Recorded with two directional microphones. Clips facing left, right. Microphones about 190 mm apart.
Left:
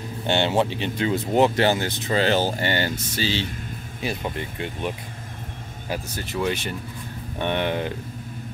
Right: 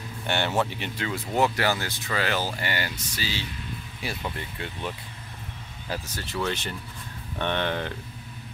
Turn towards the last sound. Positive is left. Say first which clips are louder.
# left 3 dB
turn(degrees=15)  # may be behind; listen again after turning